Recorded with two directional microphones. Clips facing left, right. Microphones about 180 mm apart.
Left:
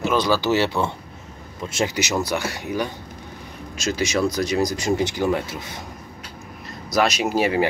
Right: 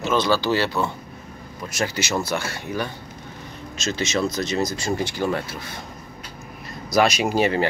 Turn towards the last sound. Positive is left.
turn(degrees=5)  # may be behind; listen again after turning